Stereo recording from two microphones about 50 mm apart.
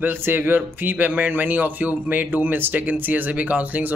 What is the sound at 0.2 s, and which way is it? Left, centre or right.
Speech, right.